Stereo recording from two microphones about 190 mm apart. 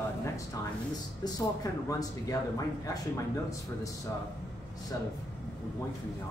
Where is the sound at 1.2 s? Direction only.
20° left (ahead or behind).